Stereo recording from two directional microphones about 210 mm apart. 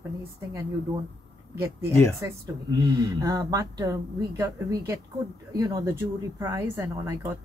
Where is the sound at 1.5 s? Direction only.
15° right (ahead or behind).